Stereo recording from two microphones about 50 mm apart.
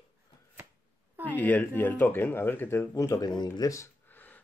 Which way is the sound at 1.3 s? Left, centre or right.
Left.